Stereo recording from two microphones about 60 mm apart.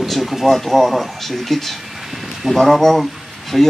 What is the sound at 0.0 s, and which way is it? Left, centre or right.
Speech, centre.